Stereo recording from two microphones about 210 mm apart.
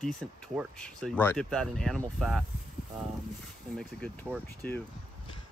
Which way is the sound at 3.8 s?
5° left (ahead or behind).